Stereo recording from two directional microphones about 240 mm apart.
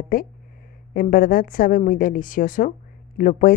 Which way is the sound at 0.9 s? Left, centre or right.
Left.